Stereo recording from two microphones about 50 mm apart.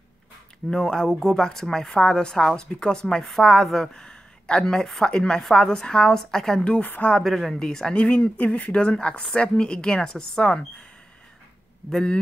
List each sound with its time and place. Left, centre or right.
0.7 s a woman's voice: centre
6.6 s speech: left
7.2 s speech: centre
7.5 s a woman's voice: centre
7.9 s speech: left